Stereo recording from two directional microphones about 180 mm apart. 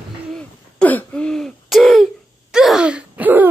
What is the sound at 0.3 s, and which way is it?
Throat clearing, 5° left (ahead or behind).